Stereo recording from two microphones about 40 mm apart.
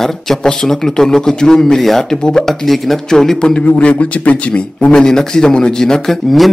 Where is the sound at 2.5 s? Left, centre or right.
Centre.